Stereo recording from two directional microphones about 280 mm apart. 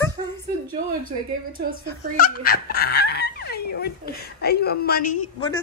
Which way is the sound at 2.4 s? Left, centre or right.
Left.